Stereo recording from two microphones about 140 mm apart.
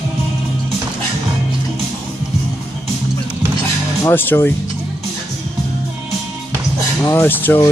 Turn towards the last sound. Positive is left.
turn(degrees=15)  # may be behind; listen again after turning